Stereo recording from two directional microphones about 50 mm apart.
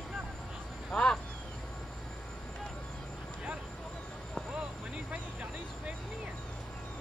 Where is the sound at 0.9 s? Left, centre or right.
Left.